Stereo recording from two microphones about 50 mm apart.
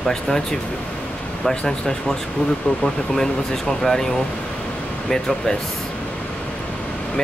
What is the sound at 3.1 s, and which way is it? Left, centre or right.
Speech, centre.